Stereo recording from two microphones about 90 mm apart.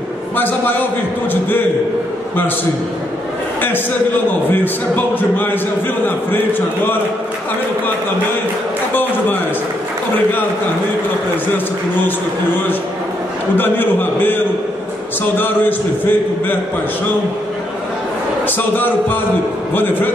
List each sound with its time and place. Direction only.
0.4 s a man's voice: 20° left (ahead or behind)
4.5 s a man's voice: 20° left (ahead or behind)
13.6 s a man's voice: 20° left (ahead or behind)
18.8 s a man's voice: 20° left (ahead or behind)